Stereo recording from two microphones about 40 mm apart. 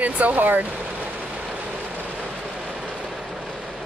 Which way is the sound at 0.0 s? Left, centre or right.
Right.